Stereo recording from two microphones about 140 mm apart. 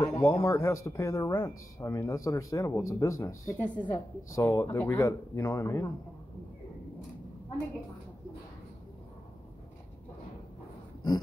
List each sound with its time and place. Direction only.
0.0 s speech: 20° left (ahead or behind)
3.7 s speech: 30° left (ahead or behind)